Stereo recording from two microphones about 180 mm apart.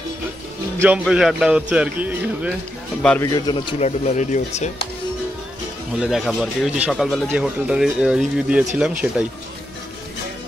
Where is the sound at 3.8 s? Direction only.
40° left (ahead or behind).